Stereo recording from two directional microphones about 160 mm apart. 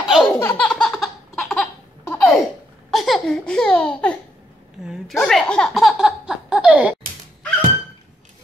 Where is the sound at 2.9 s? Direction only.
Centre (ahead or behind).